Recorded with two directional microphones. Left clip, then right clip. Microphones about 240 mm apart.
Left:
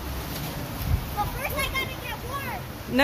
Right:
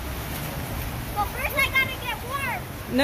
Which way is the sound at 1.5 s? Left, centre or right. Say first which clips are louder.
Right 8 dB; centre.